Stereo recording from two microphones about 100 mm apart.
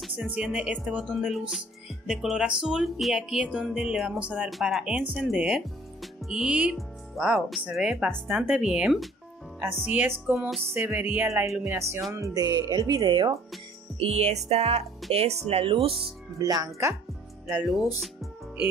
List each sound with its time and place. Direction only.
0.3 s speech: 10° right (ahead or behind)
9.6 s speech: 20° right (ahead or behind)
11.2 s speech: 30° right (ahead or behind); by 13.3 s 45° right (ahead or behind)
13.9 s music: 85° right
15.1 s speech: 85° right; by 15.9 s 65° right (ahead or behind)
16.4 s speech: 35° right (ahead or behind)
17.5 s speech: 5° right (ahead or behind)